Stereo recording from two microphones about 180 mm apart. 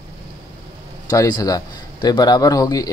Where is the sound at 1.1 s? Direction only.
20° left (ahead or behind).